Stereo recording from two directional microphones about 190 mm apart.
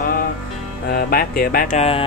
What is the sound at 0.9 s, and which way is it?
Speech, 50° left (ahead or behind).